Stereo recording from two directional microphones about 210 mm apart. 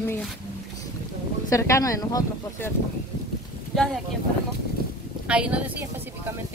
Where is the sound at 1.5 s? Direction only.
15° left (ahead or behind).